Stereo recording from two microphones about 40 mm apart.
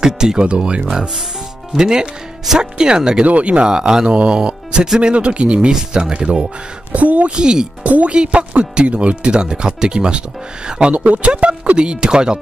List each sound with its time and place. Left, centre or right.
0.0 s speech: centre
3.3 s speech: right
3.6 s speech: centre
6.9 s speech: right
7.3 s speech: right
7.8 s speech: right
10.9 s speech: right